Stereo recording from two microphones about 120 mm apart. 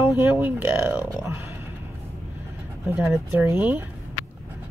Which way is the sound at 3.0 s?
20° right (ahead or behind).